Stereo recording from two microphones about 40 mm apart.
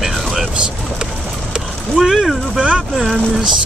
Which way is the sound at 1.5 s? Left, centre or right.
Centre.